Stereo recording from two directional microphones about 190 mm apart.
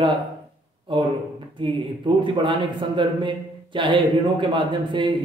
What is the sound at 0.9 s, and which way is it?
Speech, 25° right (ahead or behind).